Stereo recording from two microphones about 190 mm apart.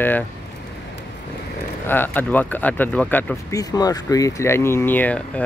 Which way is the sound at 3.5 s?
20° left (ahead or behind).